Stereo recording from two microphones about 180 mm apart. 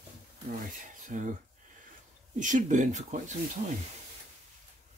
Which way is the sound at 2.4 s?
45° right (ahead or behind).